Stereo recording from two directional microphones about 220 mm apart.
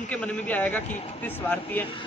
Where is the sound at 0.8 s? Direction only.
35° left (ahead or behind).